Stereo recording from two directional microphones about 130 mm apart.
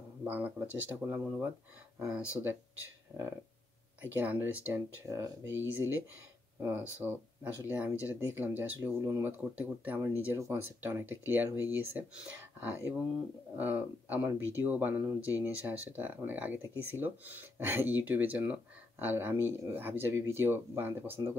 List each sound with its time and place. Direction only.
0.2 s a sound: 15° right (ahead or behind)
0.8 s speech: 15° right (ahead or behind)
5.0 s speech: 25° right (ahead or behind)